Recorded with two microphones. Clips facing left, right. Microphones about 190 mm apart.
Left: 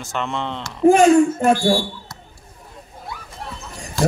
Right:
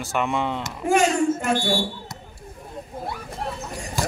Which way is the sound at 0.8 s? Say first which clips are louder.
Left 8 dB; 35° left (ahead or behind).